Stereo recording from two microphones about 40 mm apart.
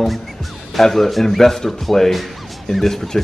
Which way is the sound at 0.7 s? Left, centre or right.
Centre.